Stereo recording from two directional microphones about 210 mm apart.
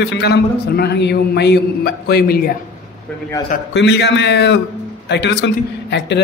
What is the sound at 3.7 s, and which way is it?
A man's voice, 55° left (ahead or behind).